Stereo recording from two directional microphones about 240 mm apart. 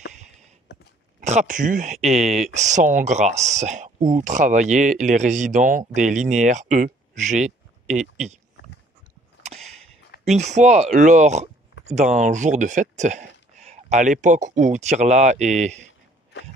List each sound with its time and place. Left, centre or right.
1.2 s speech: right
9.4 s a sound: right
10.2 s speech: right